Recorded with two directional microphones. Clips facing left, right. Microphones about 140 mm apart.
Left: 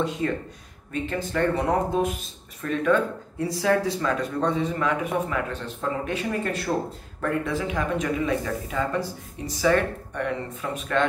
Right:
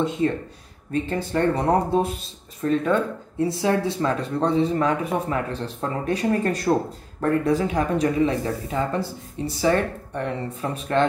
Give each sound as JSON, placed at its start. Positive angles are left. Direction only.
{"t": 1.0, "sound": "speech", "side_deg": -30}